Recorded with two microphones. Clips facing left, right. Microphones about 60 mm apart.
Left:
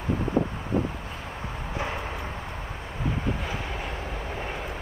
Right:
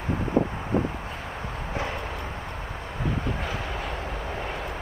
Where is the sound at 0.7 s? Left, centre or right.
Right.